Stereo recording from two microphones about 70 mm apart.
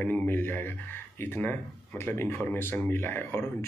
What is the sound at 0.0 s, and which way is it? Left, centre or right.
Speech, left.